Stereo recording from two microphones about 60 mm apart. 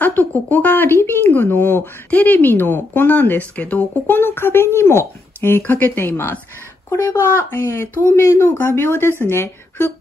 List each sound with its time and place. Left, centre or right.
0.0 s speech: left
5.6 s speech: left